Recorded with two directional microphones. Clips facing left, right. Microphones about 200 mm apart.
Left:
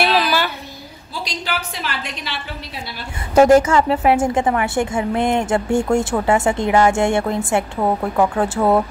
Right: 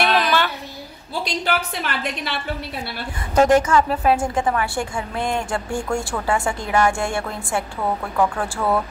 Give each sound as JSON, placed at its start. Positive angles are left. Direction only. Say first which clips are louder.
{"t": 0.0, "sound": "a sound", "louder": "left 1 dB", "side_deg": 5}
{"t": 1.2, "sound": "a woman's voice", "louder": "right 3 dB", "side_deg": -55}
{"t": 3.5, "sound": "a woman's voice", "louder": "left 3 dB", "side_deg": 25}